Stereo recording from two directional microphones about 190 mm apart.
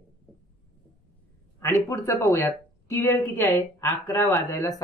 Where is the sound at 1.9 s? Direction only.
15° left (ahead or behind).